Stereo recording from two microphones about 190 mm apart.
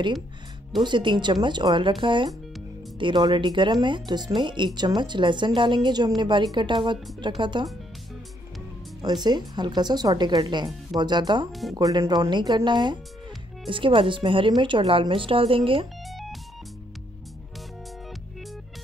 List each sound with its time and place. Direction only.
0.8 s a woman's voice: 25° right (ahead or behind)
9.0 s a woman's voice: 20° right (ahead or behind)
16.1 s music: centre (ahead or behind)